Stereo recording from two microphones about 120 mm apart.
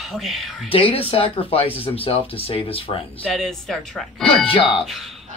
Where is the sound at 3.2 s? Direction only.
5° left (ahead or behind).